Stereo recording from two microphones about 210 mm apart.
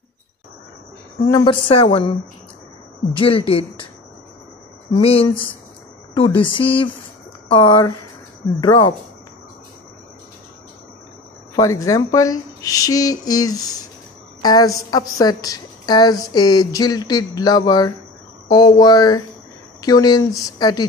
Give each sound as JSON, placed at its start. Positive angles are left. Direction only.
{"t": 1.3, "sound": "a woman's voice", "side_deg": 25}
{"t": 3.2, "sound": "a woman's voice", "side_deg": 25}
{"t": 4.9, "sound": "a woman's voice", "side_deg": 25}
{"t": 11.5, "sound": "a woman's voice", "side_deg": 15}